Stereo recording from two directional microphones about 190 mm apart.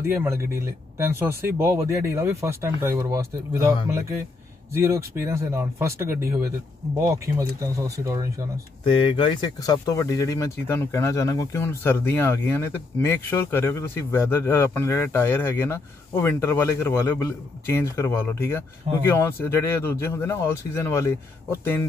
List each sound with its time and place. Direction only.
0.1 s speech: 15° right (ahead or behind)
8.8 s speech: 25° left (ahead or behind)